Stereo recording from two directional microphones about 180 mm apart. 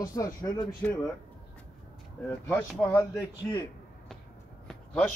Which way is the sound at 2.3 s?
10° left (ahead or behind).